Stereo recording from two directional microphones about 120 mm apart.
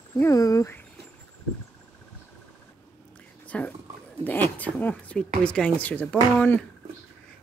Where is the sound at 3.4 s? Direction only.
10° left (ahead or behind).